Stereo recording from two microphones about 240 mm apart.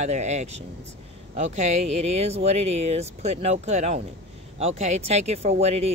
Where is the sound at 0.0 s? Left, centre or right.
Right.